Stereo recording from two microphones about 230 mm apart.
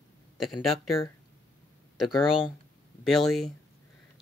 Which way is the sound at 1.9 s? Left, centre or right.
Centre.